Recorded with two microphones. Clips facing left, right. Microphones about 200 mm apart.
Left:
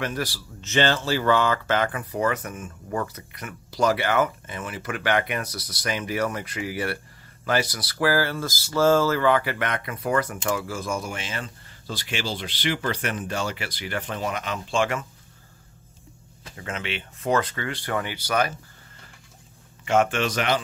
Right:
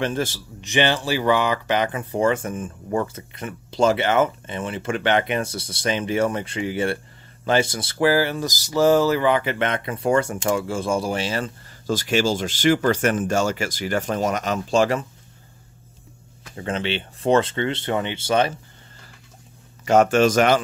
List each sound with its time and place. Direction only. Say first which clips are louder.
0.0 s speech: right 5 dB; 25° right (ahead or behind)
16.5 s speech: right 7 dB; 30° right (ahead or behind)
19.8 s speech: right 6 dB; 40° right (ahead or behind)